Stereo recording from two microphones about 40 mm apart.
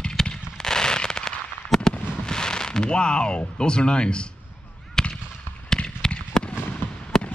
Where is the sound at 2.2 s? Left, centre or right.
Centre.